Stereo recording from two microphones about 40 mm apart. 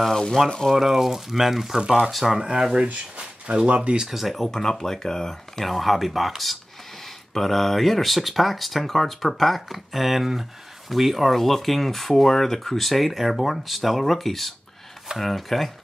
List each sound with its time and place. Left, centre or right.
0.1 s speech: centre
0.7 s speech: centre
2.5 s speech: right
4.0 s speech: centre
4.5 s speech: centre